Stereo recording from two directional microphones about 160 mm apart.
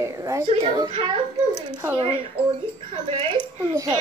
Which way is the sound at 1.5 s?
15° right (ahead or behind).